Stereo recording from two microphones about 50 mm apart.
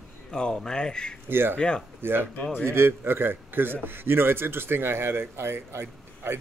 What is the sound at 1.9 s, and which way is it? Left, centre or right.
A man's voice, right.